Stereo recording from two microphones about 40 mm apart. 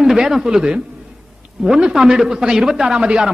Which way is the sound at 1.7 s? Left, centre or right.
Centre.